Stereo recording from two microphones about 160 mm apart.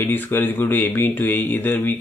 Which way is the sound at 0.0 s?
10° left (ahead or behind).